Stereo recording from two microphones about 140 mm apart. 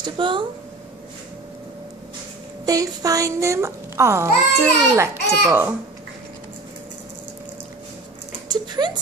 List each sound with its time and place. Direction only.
0.0 s speech: 35° right (ahead or behind)
2.6 s a child's voice: 25° right (ahead or behind)
8.5 s a sound: 30° right (ahead or behind)